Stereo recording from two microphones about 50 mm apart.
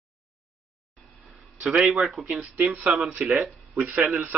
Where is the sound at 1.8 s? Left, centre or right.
Centre.